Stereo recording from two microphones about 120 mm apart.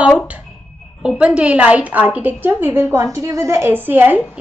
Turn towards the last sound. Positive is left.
turn(degrees=-15)  # may be behind; listen again after turning